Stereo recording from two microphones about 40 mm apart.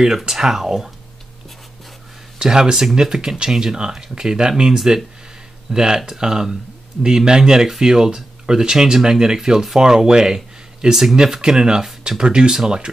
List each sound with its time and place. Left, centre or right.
0.3 s speech: centre
2.3 s speech: centre